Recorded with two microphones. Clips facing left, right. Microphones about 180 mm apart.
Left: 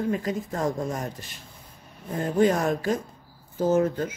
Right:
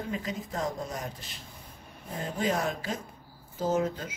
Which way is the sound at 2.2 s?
50° left (ahead or behind).